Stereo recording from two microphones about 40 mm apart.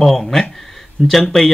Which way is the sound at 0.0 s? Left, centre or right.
Centre.